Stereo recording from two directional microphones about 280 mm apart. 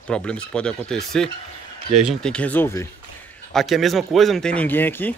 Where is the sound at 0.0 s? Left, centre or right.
Centre.